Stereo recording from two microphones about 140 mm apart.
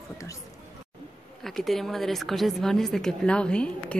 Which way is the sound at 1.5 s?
Centre (ahead or behind).